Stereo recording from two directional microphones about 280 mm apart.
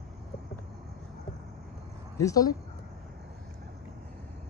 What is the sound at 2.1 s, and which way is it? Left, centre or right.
Speech, centre.